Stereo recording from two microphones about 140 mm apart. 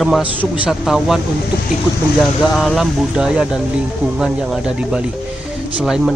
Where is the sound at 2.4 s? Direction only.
Centre (ahead or behind).